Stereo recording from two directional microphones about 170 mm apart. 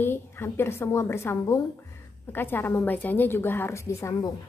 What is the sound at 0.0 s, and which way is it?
A woman's voice, 15° left (ahead or behind).